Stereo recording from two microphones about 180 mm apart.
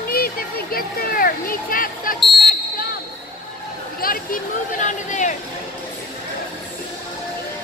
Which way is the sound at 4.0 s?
50° left (ahead or behind).